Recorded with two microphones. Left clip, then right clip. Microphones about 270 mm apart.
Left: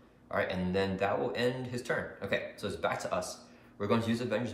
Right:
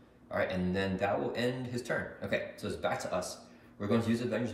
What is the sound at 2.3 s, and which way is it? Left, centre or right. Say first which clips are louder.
A man's voice: left 1 dB; centre.